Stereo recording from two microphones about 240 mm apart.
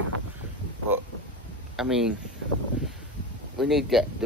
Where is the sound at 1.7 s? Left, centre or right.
Centre.